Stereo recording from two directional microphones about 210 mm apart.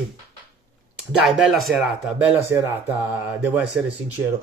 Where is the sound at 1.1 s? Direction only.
Centre (ahead or behind).